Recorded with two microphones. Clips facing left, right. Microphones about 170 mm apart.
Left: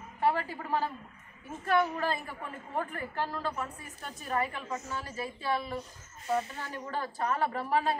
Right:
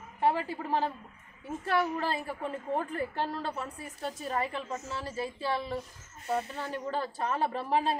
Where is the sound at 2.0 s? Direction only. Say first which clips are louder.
Right 1 dB; 30° right (ahead or behind).